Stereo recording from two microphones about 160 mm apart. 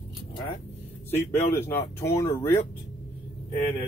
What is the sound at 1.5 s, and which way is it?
Speech, 15° left (ahead or behind).